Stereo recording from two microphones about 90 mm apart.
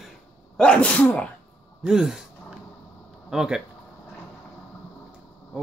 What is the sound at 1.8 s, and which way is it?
Speech, 5° right (ahead or behind).